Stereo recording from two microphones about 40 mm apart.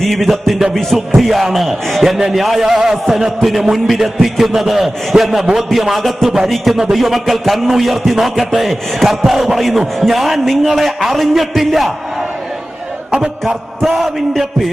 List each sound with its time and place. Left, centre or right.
0.0 s a man's voice: centre
13.1 s a man's voice: centre
13.8 s a man's voice: centre